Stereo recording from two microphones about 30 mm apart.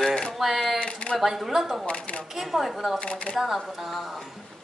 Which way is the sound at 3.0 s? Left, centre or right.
Left.